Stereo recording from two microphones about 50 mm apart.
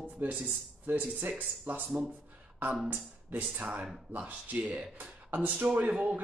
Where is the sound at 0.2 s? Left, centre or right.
Right.